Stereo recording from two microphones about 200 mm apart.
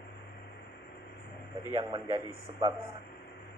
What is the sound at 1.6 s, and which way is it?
A man's voice, 20° right (ahead or behind).